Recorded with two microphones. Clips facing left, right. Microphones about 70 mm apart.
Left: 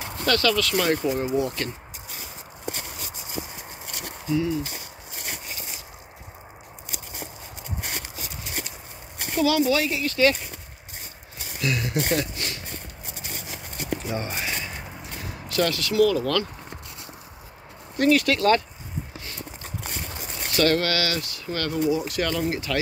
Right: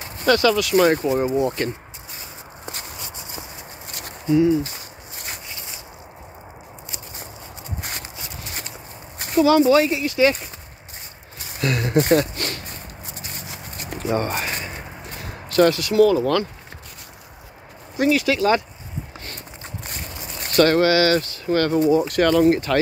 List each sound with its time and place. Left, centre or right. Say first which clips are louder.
0.2 s speech: right 5 dB; centre
4.3 s speech: right 8 dB; right
9.4 s speech: right 7 dB; right
11.6 s speech: right 6 dB; right
14.0 s speech: right 7 dB; right
15.4 s a sound: right 8 dB; right
15.7 s speech: right 5 dB; right
17.9 s speech: right 1 dB; centre
20.6 s speech: right 6 dB; right